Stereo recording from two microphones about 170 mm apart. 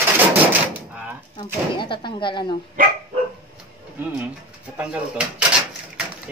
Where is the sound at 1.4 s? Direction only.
30° left (ahead or behind).